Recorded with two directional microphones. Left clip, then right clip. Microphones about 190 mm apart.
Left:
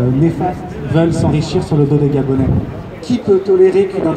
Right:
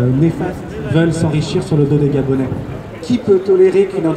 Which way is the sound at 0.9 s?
10° right (ahead or behind).